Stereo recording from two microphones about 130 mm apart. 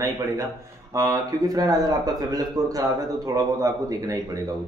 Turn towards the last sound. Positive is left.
turn(degrees=-25)  # may be behind; listen again after turning